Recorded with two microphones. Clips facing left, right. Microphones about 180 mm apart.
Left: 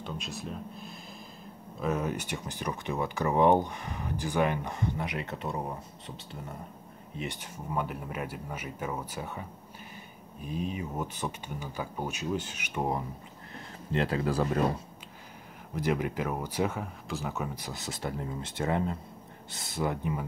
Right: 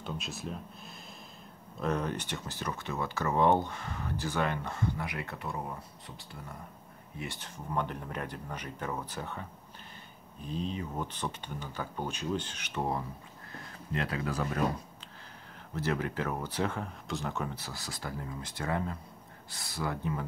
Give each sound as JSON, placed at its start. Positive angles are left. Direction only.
{"t": 0.0, "sound": "speech", "side_deg": 0}
{"t": 13.9, "sound": "speech", "side_deg": 30}
{"t": 15.7, "sound": "speech", "side_deg": 15}